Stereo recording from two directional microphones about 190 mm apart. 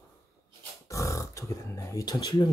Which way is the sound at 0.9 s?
15° left (ahead or behind).